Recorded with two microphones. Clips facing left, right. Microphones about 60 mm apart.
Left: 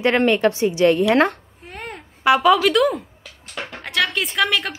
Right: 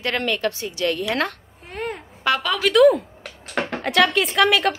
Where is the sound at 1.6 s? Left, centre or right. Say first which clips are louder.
Right 5 dB; centre.